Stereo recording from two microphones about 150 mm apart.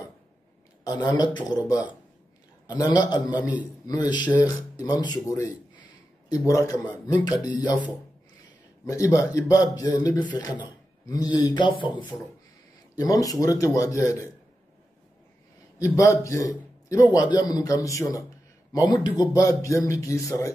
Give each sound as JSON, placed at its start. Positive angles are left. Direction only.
{"t": 0.9, "sound": "a man's voice", "side_deg": 30}
{"t": 2.6, "sound": "a man's voice", "side_deg": 25}
{"t": 6.2, "sound": "a man's voice", "side_deg": 25}
{"t": 8.8, "sound": "a man's voice", "side_deg": 20}
{"t": 15.8, "sound": "a man's voice", "side_deg": 20}